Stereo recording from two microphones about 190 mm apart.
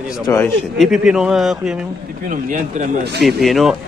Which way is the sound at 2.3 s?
45° right (ahead or behind).